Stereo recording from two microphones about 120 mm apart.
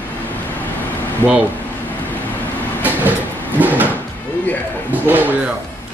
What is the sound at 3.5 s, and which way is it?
Drawer open or close, 15° right (ahead or behind).